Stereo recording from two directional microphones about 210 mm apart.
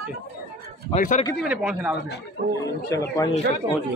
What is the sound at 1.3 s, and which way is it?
Speech, 5° right (ahead or behind).